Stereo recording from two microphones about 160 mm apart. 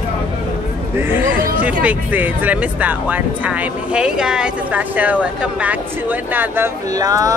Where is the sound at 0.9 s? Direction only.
10° right (ahead or behind).